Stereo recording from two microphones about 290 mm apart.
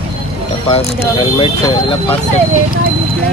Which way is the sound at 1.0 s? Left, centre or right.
Centre.